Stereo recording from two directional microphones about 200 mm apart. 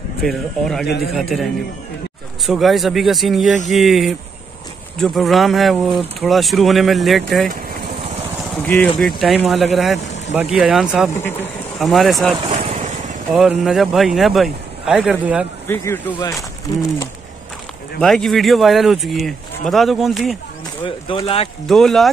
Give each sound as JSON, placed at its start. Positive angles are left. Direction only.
{"t": 0.2, "sound": "speech", "side_deg": 0}
{"t": 8.6, "sound": "speech", "side_deg": 10}
{"t": 11.1, "sound": "speech", "side_deg": 10}
{"t": 11.8, "sound": "speech", "side_deg": 0}
{"t": 12.4, "sound": "vehicle", "side_deg": -30}
{"t": 13.3, "sound": "speech", "side_deg": 0}
{"t": 15.6, "sound": "speech", "side_deg": 10}
{"t": 18.0, "sound": "speech", "side_deg": 0}
{"t": 20.8, "sound": "speech", "side_deg": 25}
{"t": 21.6, "sound": "speech", "side_deg": 0}